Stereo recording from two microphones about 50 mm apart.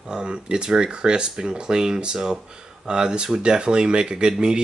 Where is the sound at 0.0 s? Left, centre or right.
Centre.